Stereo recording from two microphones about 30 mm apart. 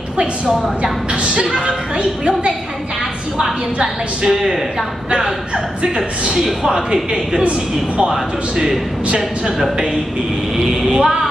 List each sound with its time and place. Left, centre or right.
1.2 s speech: right
3.4 s a woman's voice: centre
6.3 s a woman's voice: centre
10.8 s a woman's voice: centre